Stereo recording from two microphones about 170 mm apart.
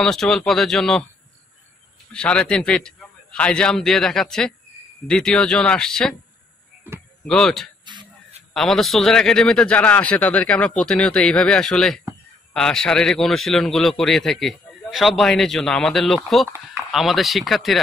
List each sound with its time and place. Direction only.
0.0 s a man's voice: 5° left (ahead or behind)
2.1 s a man's voice: 5° left (ahead or behind)
7.2 s a man's voice: 5° left (ahead or behind)
7.8 s a sound: 25° right (ahead or behind)
8.5 s a man's voice: centre (ahead or behind)